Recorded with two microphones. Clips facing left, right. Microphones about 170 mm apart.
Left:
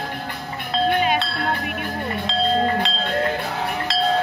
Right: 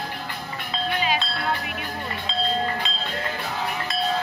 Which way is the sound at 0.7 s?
55° left (ahead or behind).